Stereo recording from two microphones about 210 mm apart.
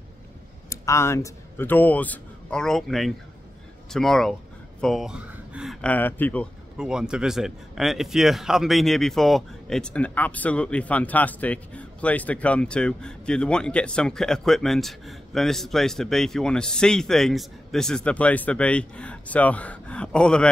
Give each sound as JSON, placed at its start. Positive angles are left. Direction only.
{"t": 0.7, "sound": "speech", "side_deg": 15}
{"t": 6.8, "sound": "speech", "side_deg": -5}